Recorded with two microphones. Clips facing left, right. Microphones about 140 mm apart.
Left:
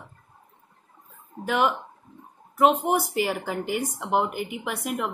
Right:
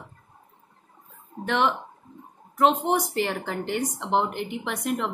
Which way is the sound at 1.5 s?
5° left (ahead or behind).